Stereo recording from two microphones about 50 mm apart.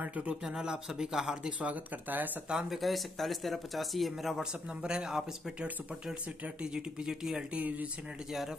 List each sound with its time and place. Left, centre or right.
0.0 s speech: right
0.4 s speech: centre
1.6 s speech: right
2.5 s speech: centre
4.4 s speech: centre
7.5 s speech: right